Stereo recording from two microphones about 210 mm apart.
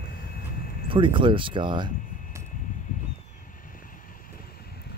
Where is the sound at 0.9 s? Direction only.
25° right (ahead or behind).